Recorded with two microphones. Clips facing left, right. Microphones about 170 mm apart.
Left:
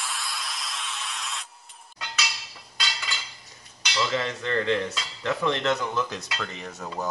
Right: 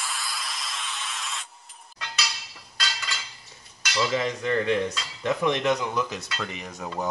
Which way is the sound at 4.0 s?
15° right (ahead or behind).